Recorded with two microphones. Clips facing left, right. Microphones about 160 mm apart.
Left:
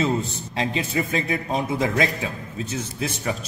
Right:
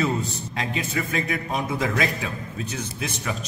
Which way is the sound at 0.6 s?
30° left (ahead or behind).